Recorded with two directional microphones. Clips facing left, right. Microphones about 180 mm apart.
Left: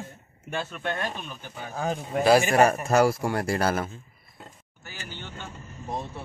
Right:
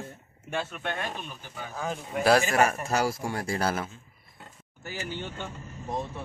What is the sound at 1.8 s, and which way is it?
Speech, 35° left (ahead or behind).